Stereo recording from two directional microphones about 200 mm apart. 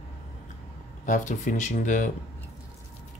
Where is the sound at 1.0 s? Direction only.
40° left (ahead or behind).